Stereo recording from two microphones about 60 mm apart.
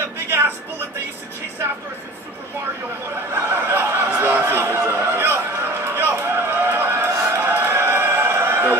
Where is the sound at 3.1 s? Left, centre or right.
Right.